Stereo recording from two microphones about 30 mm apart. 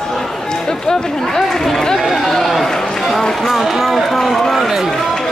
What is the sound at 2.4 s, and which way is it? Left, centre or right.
Speech, centre.